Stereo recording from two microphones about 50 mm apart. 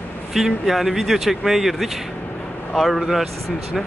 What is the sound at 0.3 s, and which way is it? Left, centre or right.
Speech, centre.